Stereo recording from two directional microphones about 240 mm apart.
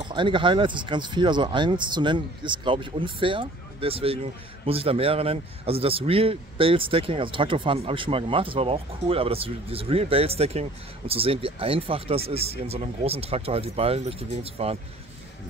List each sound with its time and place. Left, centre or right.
0.0 s speech: centre